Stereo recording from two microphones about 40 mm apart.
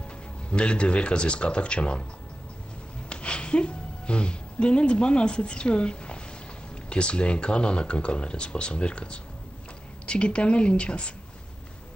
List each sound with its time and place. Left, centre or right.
0.5 s speech: left
3.1 s a woman's voice: left